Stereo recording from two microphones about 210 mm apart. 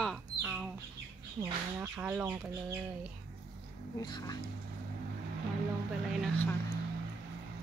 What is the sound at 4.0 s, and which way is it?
Speech, 20° left (ahead or behind).